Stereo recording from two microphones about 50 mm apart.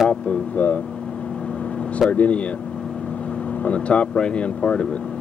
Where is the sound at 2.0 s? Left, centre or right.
Left.